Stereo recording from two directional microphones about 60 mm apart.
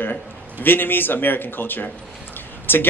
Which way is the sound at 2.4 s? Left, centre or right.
Left.